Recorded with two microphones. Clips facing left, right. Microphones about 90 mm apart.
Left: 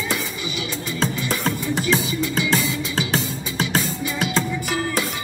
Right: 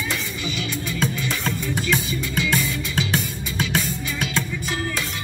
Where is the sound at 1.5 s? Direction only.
30° left (ahead or behind).